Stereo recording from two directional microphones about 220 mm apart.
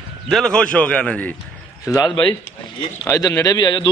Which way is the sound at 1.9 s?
20° left (ahead or behind).